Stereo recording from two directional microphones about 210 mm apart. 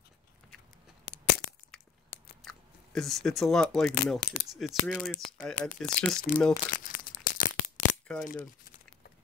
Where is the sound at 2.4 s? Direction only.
Centre (ahead or behind).